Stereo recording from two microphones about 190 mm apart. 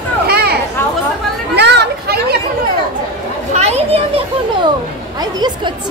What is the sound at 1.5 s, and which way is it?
Speech, 60° right (ahead or behind).